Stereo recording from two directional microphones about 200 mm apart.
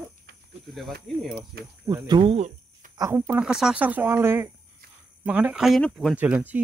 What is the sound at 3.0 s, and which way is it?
Speech, 15° right (ahead or behind).